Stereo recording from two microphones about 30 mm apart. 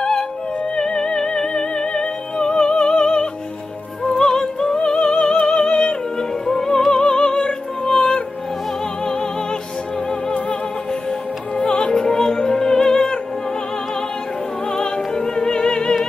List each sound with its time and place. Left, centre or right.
0.7 s music: left
4.2 s music: centre
4.7 s music: left
10.9 s music: left
14.7 s opera: left